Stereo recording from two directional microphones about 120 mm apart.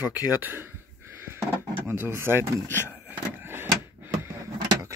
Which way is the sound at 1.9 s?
20° right (ahead or behind).